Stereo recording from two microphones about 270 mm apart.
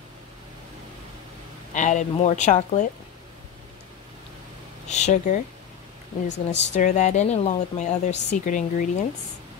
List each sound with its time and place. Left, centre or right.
1.7 s a woman's voice: left
4.8 s a woman's voice: left
6.3 s speech: left
6.9 s a woman's voice: left